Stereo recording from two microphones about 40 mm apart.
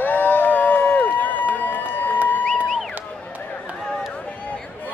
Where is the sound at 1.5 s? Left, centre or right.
Left.